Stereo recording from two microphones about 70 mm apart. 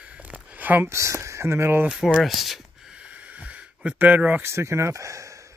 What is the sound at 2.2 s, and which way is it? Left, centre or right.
Speech, centre.